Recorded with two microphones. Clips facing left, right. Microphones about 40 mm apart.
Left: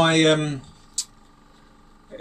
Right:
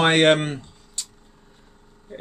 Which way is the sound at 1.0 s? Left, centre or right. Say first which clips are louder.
Left 1 dB; right.